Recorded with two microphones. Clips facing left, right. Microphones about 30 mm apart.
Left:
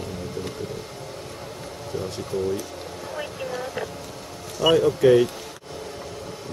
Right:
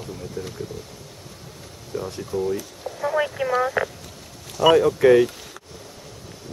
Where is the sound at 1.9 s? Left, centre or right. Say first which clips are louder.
Right 1 dB; left.